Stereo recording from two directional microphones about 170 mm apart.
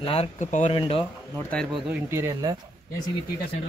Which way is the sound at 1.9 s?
15° right (ahead or behind).